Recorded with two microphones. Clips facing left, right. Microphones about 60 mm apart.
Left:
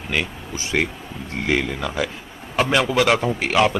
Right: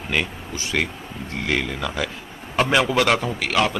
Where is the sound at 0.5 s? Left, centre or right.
Left.